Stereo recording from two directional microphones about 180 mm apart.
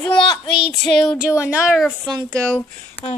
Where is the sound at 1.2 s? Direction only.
15° left (ahead or behind).